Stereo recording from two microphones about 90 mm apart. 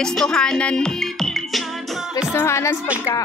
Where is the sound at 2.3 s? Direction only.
30° left (ahead or behind).